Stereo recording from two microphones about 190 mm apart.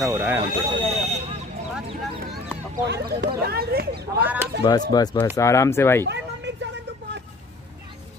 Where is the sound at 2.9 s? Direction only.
60° right (ahead or behind).